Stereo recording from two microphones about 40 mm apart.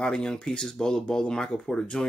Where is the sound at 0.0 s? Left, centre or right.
Centre.